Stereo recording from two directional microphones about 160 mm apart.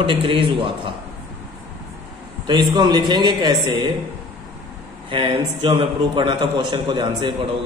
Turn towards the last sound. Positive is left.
turn(degrees=-30)  # may be behind; listen again after turning